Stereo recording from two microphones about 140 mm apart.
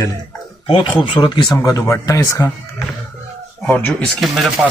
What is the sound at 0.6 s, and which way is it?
Speech, 40° left (ahead or behind).